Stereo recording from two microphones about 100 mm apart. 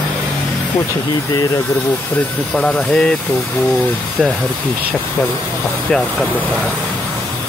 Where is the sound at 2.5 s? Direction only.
10° left (ahead or behind).